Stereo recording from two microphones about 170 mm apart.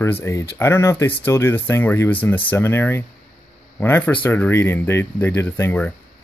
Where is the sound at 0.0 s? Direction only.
15° left (ahead or behind).